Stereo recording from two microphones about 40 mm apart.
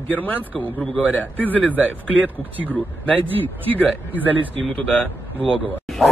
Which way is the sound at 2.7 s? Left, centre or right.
Left.